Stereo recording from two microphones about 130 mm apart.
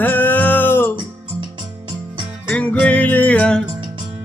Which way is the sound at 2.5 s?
10° left (ahead or behind).